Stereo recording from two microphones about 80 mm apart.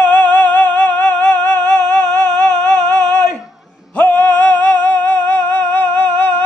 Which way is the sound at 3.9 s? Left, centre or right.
Left.